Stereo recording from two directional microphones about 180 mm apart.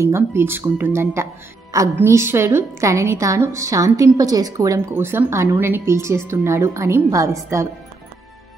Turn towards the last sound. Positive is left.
turn(degrees=-15)  # may be behind; listen again after turning